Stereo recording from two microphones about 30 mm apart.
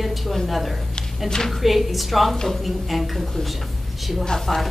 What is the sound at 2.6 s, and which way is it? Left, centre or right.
Speech, centre.